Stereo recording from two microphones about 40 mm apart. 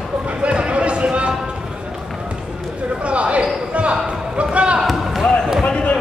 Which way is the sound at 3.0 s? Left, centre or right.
Right.